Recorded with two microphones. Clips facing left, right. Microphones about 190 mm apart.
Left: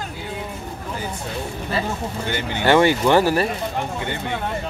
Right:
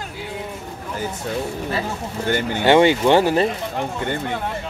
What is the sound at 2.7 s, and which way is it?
Speech, 20° right (ahead or behind).